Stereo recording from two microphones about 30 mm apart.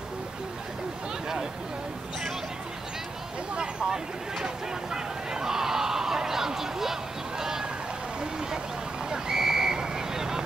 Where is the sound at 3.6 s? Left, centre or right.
Right.